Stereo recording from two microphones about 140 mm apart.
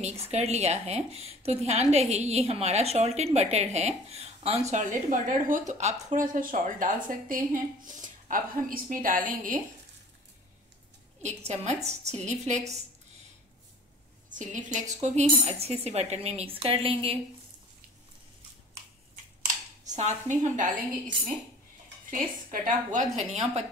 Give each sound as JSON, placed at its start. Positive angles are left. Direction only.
{"t": 0.0, "sound": "a woman's voice", "side_deg": -50}
{"t": 11.8, "sound": "a woman's voice", "side_deg": -50}
{"t": 14.3, "sound": "a woman's voice", "side_deg": -65}
{"t": 19.9, "sound": "a woman's voice", "side_deg": -55}
{"t": 22.1, "sound": "a woman's voice", "side_deg": -70}